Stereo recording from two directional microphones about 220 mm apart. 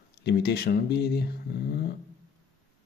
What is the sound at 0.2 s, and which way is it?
Speech, 50° left (ahead or behind).